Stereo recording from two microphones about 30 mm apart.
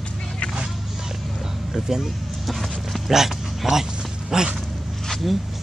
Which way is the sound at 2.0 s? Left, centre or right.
Centre.